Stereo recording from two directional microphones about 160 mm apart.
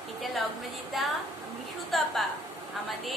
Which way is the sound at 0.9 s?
Centre (ahead or behind).